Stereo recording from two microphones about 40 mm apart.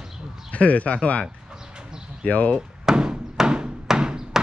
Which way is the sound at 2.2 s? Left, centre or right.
Left.